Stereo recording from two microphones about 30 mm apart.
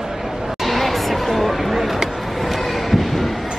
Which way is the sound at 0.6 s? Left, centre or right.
Centre.